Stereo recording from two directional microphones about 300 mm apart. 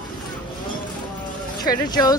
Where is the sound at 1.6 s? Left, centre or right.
Centre.